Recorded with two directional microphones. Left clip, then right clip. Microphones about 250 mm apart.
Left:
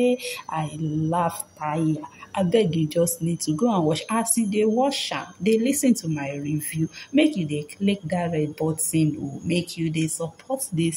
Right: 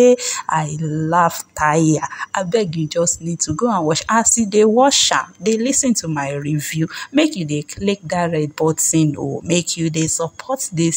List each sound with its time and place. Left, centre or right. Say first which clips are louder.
0.0 s speech: right 10 dB; right
2.8 s speech: right 4 dB; centre